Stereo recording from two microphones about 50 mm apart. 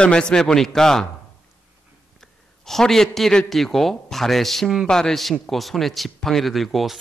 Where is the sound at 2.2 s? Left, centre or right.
Centre.